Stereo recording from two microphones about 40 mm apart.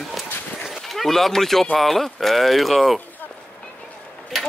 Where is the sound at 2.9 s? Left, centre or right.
Left.